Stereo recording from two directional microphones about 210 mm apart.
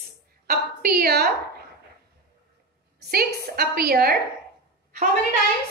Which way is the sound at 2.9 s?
45° right (ahead or behind).